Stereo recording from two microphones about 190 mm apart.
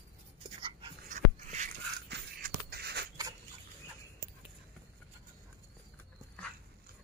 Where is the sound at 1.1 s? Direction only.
40° right (ahead or behind).